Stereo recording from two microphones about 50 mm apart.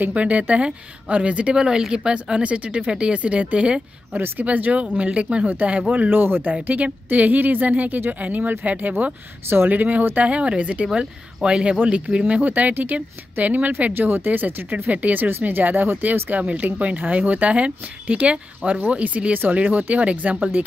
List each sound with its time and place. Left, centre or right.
0.0 s speech: right
1.6 s speech: centre
6.0 s speech: right
6.5 s speech: right
10.9 s speech: centre; by 13.9 s right
13.9 s speech: right